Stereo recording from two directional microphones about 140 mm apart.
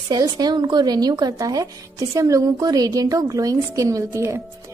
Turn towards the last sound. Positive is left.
turn(degrees=-20)  # may be behind; listen again after turning